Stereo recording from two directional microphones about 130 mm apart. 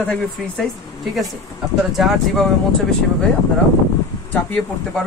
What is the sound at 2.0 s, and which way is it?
Speech, centre (ahead or behind).